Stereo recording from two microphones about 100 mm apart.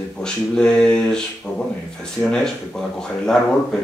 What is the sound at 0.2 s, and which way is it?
Speech, 10° left (ahead or behind).